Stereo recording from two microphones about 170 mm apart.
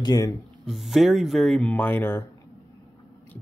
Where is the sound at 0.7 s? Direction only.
Centre (ahead or behind).